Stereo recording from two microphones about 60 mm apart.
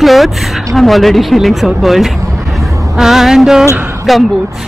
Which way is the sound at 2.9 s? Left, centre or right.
Centre.